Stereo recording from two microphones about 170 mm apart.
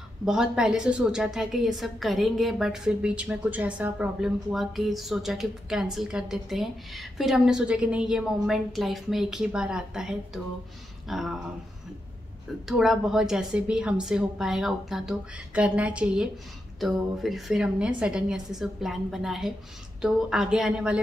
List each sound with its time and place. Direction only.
0.2 s a woman's voice: 5° right (ahead or behind)
12.6 s a woman's voice: centre (ahead or behind)